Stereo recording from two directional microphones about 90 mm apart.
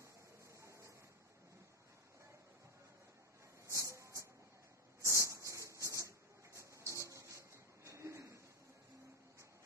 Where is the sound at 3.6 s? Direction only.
35° right (ahead or behind).